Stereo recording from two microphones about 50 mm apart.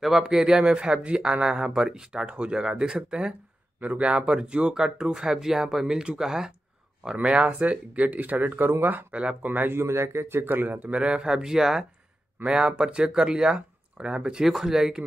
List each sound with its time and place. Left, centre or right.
0.2 s speech: centre
7.2 s speech: right
9.1 s speech: right
9.5 s speech: right
9.8 s speech: right
10.4 s speech: right
11.0 s speech: right